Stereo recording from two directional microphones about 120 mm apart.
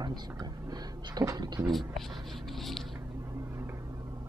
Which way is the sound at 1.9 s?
Centre (ahead or behind).